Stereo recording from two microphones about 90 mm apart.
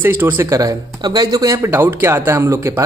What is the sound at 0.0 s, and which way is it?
Speech, 25° right (ahead or behind).